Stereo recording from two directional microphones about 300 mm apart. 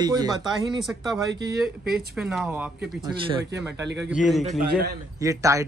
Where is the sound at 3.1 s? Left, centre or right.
Centre.